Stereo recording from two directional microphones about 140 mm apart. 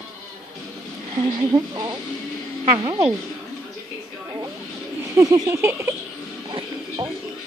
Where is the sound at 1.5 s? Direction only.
30° right (ahead or behind).